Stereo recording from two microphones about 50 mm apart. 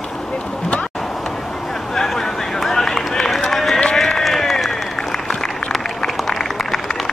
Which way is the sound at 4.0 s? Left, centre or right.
Centre.